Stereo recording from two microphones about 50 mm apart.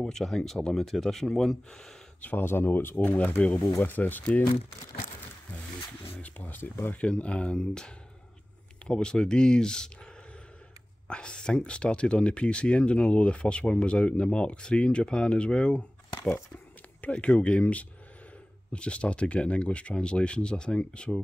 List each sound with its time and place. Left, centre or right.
0.0 s speech: centre
2.2 s speech: left
6.1 s speech: left
7.0 s speech: left
11.1 s speech: centre